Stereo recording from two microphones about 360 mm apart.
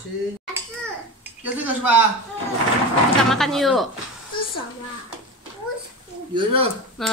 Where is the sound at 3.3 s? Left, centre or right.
Centre.